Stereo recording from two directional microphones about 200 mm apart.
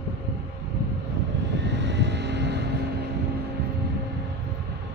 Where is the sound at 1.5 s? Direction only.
60° right (ahead or behind).